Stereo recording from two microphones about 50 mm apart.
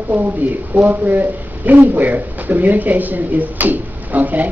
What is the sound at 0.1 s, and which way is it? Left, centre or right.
A woman's voice, right.